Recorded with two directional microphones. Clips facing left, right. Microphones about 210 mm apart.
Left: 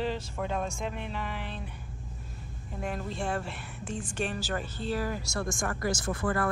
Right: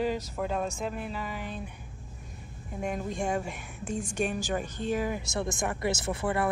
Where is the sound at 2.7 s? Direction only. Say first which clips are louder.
Right 2 dB; 10° right (ahead or behind).